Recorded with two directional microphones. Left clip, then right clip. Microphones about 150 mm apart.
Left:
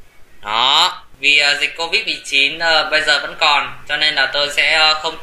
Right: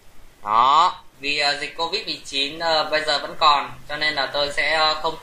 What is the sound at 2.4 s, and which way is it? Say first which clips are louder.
Speech: left 6 dB; 30° left (ahead or behind).